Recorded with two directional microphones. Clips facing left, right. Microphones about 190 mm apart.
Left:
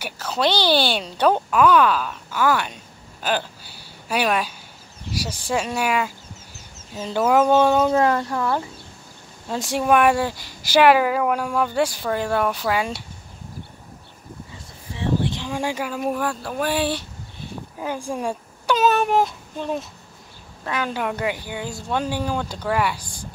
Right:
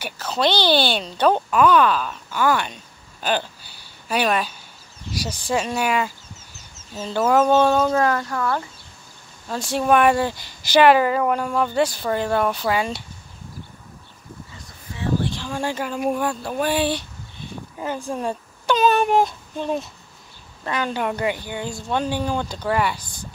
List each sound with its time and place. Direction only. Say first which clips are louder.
0.0 s speech: right 1 dB; 10° left (ahead or behind)
7.9 s speech: left 1 dB; 25° left (ahead or behind); by 13.0 s 5° left (ahead or behind)
15.0 s livestock: left 1 dB; 20° left (ahead or behind)
16.0 s speech: right 3 dB; centre (ahead or behind)